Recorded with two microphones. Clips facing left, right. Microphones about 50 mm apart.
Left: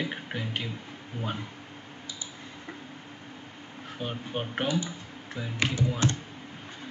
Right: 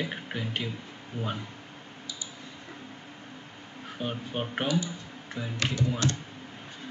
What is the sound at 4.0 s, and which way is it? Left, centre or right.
Speech, centre.